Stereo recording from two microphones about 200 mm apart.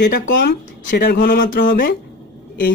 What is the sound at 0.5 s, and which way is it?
A man's voice, 50° left (ahead or behind).